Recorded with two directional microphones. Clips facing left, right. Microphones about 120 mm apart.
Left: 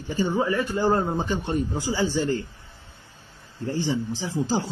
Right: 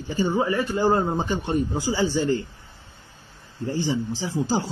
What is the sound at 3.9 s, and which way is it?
Speech, 20° right (ahead or behind).